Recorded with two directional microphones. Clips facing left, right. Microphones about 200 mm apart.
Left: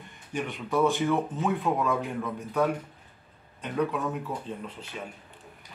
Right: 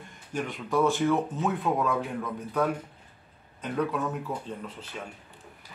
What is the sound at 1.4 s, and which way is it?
Speech, centre (ahead or behind).